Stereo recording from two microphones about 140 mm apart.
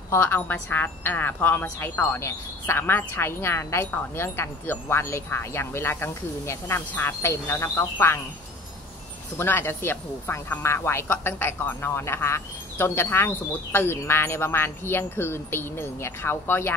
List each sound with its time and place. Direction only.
0.1 s a woman's voice: 15° left (ahead or behind)
9.4 s a woman's voice: 15° left (ahead or behind)